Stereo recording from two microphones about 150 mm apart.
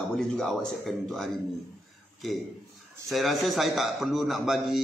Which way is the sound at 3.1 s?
Centre (ahead or behind).